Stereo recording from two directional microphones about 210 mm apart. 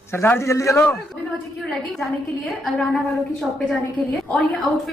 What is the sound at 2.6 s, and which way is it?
Speech, centre (ahead or behind).